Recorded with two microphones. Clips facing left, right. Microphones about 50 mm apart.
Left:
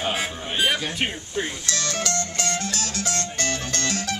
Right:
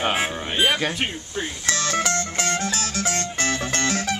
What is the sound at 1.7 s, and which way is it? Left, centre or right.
Music, right.